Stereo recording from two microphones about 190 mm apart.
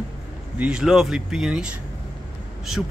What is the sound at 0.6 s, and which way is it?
A man's voice, 5° right (ahead or behind).